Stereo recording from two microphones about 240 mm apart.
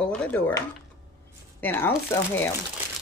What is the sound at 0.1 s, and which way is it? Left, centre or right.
Speech, centre.